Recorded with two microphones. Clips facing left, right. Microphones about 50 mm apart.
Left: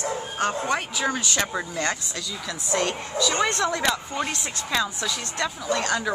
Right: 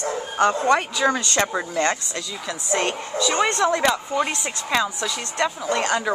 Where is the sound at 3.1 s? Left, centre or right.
Right.